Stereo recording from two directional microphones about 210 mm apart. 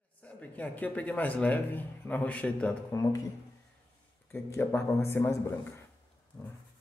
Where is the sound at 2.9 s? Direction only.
15° left (ahead or behind).